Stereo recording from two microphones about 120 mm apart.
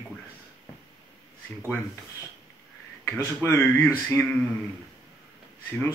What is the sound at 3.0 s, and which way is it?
Speech, 25° left (ahead or behind).